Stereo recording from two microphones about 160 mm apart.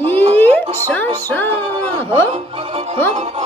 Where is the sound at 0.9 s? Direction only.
10° left (ahead or behind).